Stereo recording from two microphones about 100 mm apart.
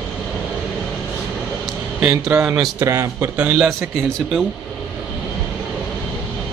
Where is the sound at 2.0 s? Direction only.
5° right (ahead or behind).